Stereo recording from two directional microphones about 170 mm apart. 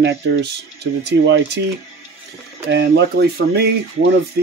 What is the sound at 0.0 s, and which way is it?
Speech, 85° right.